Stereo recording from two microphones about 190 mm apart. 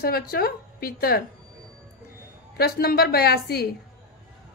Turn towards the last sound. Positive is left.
turn(degrees=55)  # may be behind; listen again after turning